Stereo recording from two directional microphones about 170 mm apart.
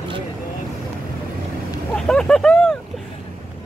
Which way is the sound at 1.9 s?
5° left (ahead or behind).